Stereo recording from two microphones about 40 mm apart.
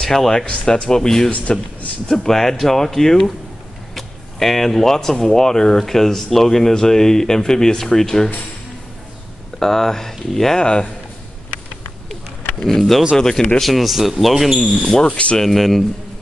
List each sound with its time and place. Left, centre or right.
0.0 s speech: centre
0.5 s speech: left
0.8 s speech: centre
1.3 s speech: left
2.0 s speech: centre
9.6 s speech: centre
10.6 s speech: left
12.6 s speech: centre
13.6 s speech: centre
14.8 s speech: centre
15.3 s speech: centre